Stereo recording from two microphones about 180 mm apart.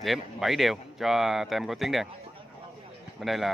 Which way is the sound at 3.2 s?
Centre (ahead or behind).